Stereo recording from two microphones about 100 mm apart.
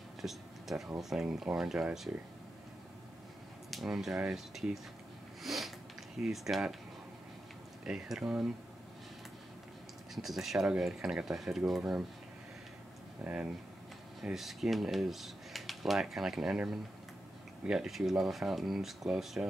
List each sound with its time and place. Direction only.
0.2 s a sound: centre (ahead or behind)
0.9 s speech: 5° right (ahead or behind)
3.7 s speech: 5° right (ahead or behind)
5.4 s sniff: centre (ahead or behind)
6.2 s speech: 5° right (ahead or behind)
7.8 s speech: 5° right (ahead or behind)
10.1 s speech: centre (ahead or behind)
13.2 s speech: 15° right (ahead or behind)
14.2 s speech: 5° right (ahead or behind)